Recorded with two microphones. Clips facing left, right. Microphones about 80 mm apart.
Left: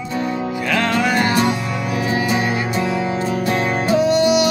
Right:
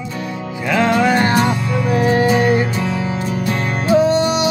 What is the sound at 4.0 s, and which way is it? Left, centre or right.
Music, right.